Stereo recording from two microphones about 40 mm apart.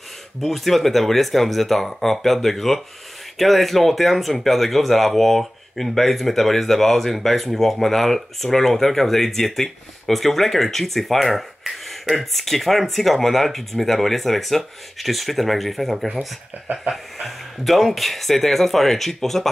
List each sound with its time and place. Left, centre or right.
0.4 s speech: centre
16.5 s a sound: right
16.9 s speech: centre